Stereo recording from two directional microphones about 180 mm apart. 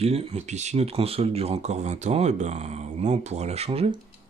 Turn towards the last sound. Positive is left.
turn(degrees=-35)  # may be behind; listen again after turning